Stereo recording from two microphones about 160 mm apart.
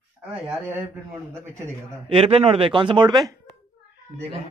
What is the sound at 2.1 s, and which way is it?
Speech, 35° right (ahead or behind).